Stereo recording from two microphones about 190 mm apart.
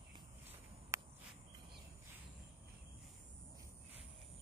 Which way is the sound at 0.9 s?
15° right (ahead or behind).